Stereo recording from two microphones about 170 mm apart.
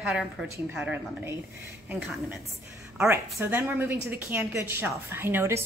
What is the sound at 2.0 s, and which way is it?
A woman's voice, 5° right (ahead or behind).